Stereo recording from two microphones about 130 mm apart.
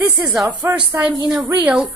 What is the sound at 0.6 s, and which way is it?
Speech, 20° right (ahead or behind).